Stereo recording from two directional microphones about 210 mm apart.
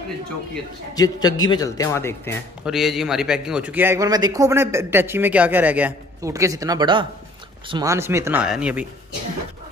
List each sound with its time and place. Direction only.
0.9 s speech: 20° left (ahead or behind)
2.6 s a man's voice: centre (ahead or behind)